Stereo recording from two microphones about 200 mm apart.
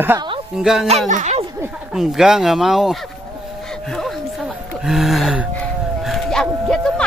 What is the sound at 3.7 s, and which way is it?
Gasp, centre (ahead or behind).